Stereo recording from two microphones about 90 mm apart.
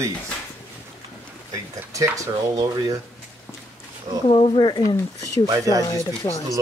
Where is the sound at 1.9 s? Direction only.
35° right (ahead or behind).